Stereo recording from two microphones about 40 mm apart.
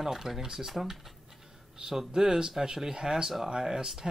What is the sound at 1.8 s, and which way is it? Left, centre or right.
Speech, centre.